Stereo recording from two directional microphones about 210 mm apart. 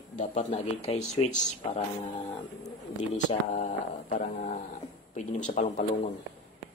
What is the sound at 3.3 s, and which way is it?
A man's voice, 35° left (ahead or behind).